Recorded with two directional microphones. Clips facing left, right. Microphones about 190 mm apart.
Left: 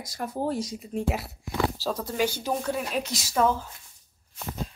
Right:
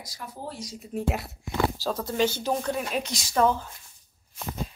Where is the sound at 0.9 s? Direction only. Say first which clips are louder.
Right 1 dB; centre (ahead or behind).